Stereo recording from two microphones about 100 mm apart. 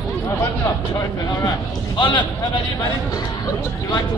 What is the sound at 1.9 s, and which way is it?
Speech, 55° left (ahead or behind).